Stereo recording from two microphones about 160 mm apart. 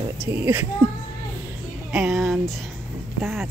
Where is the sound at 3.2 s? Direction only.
Centre (ahead or behind).